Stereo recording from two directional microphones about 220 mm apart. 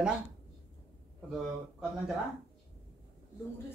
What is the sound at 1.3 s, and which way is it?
Speech, centre (ahead or behind).